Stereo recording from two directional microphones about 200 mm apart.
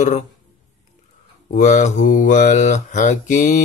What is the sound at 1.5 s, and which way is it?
Mantra, 35° left (ahead or behind).